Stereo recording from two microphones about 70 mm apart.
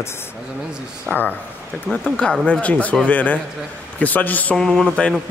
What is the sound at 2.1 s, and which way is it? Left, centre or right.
Speech, centre.